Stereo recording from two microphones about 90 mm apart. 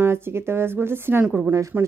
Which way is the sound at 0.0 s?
30° right (ahead or behind).